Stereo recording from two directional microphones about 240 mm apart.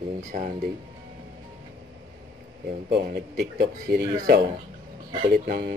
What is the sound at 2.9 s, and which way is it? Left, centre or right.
Speech, right.